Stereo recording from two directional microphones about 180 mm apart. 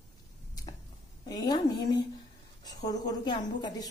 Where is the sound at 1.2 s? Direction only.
20° left (ahead or behind).